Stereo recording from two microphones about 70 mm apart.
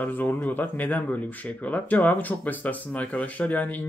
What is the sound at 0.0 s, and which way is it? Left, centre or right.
Speech, left.